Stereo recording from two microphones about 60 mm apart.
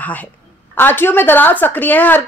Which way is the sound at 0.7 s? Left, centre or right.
Left.